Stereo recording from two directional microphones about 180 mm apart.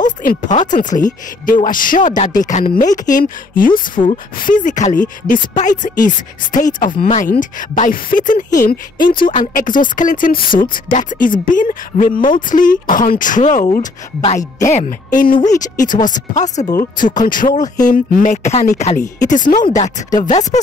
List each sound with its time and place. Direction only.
0.0 s speech: 50° left (ahead or behind)